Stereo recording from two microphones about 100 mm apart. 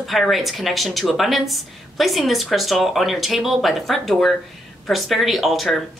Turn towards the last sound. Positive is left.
turn(degrees=0)  # may be behind; listen again after turning